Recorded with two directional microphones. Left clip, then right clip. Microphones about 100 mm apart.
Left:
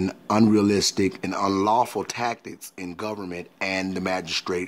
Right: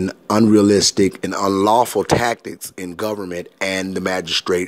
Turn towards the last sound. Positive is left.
turn(degrees=-25)  # may be behind; listen again after turning